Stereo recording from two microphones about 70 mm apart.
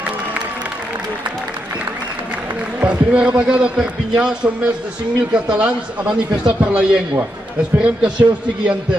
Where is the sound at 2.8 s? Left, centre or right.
Centre.